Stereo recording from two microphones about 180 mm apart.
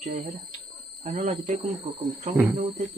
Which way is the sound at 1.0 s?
40° right (ahead or behind).